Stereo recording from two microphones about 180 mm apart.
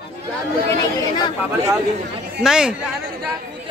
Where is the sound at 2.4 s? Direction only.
5° right (ahead or behind).